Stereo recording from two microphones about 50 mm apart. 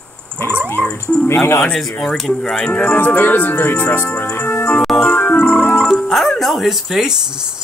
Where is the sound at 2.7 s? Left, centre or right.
Left.